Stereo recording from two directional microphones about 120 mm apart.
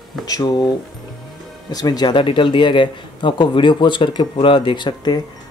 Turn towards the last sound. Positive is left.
turn(degrees=35)  # may be behind; listen again after turning